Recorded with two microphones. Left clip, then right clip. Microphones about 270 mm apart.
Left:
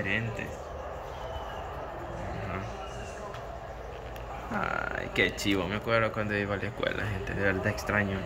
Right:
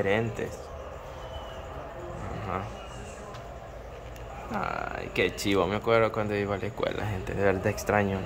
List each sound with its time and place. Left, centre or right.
0.0 s speech: centre
4.6 s speech: centre